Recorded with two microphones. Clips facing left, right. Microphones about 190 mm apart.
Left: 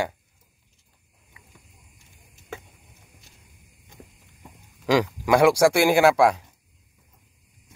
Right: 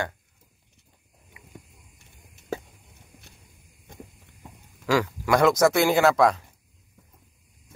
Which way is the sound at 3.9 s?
55° right (ahead or behind).